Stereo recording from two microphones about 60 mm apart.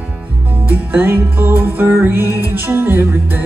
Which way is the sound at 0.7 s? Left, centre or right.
Right.